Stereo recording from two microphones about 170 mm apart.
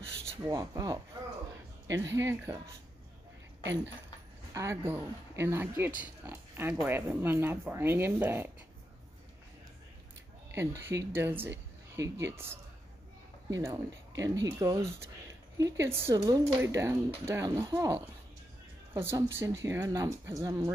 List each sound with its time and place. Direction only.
0.3 s speech: 20° right (ahead or behind)
4.6 s speech: 15° right (ahead or behind)
10.5 s speech: 15° right (ahead or behind)